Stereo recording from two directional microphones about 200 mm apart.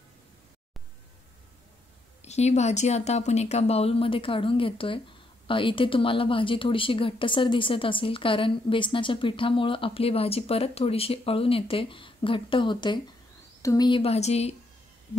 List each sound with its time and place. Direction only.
2.2 s a woman's voice: 35° left (ahead or behind)